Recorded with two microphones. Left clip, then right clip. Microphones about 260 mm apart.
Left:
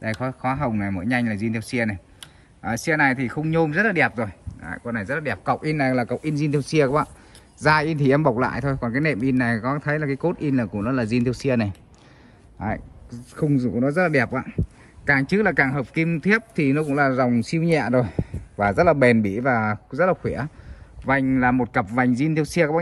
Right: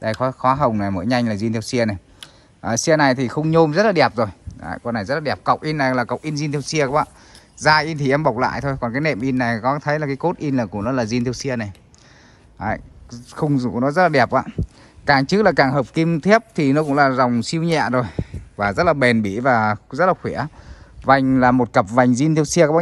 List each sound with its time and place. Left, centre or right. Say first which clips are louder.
0.0 s speech: right 7 dB; centre
4.6 s speech: right 4 dB; left
4.8 s speech: right 4 dB; centre